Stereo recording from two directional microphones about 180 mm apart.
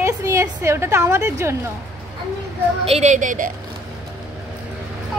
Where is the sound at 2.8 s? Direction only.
40° right (ahead or behind).